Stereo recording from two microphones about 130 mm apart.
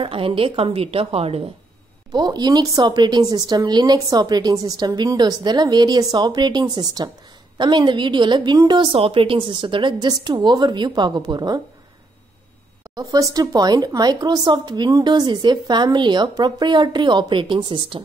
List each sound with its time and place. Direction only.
0.0 s a woman's voice: 45° right (ahead or behind)
2.1 s speech: 35° right (ahead or behind)
12.9 s speech: 30° right (ahead or behind)